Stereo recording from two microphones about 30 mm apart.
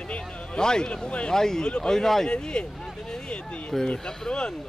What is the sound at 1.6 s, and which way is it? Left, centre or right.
Speech, left.